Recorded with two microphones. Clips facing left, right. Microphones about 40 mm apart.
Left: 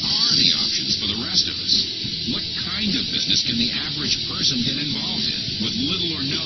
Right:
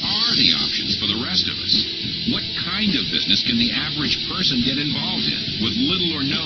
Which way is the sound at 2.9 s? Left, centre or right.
Centre.